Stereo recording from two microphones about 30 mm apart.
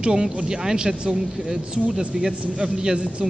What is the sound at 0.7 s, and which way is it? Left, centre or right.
A man's voice, right.